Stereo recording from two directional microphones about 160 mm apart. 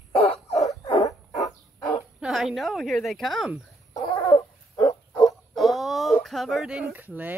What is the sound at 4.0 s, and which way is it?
Dog, 25° left (ahead or behind).